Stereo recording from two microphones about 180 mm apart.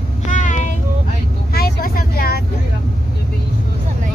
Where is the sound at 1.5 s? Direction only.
55° left (ahead or behind).